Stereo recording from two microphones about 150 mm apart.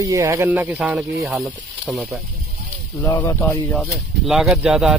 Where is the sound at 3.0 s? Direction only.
30° left (ahead or behind).